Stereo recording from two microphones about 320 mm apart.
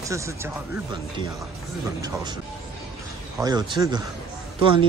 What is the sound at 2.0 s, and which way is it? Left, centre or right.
Speech, centre.